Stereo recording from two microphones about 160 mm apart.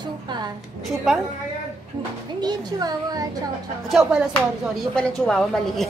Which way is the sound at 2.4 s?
25° right (ahead or behind).